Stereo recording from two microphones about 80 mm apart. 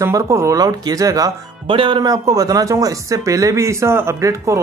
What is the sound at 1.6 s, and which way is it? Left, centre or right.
Speech, right.